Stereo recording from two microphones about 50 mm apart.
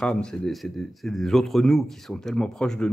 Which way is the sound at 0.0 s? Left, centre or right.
Centre.